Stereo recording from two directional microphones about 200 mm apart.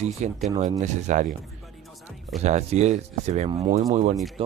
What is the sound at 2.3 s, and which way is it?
Speech, 35° right (ahead or behind).